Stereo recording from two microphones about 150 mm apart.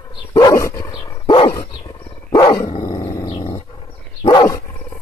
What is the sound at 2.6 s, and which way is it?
Dog, 25° left (ahead or behind).